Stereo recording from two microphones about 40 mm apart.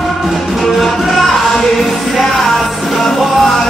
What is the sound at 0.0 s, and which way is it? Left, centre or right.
Music, centre.